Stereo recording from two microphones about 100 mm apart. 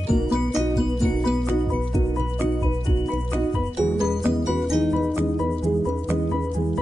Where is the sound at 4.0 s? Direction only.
5° right (ahead or behind).